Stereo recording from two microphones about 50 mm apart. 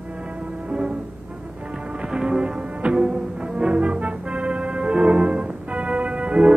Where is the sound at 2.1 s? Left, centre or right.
Centre.